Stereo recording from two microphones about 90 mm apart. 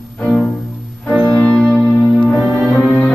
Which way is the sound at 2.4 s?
15° right (ahead or behind).